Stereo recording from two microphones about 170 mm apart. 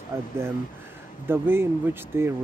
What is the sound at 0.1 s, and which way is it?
Speech, 15° right (ahead or behind).